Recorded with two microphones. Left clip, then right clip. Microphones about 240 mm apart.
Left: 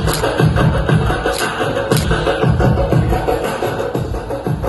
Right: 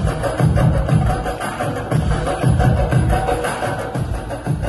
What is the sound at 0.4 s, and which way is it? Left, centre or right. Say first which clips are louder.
Music: left 4 dB; right.